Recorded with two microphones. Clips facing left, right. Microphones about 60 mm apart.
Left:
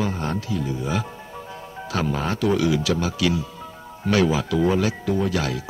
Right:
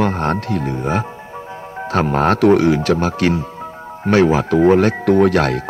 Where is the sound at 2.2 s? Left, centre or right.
Right.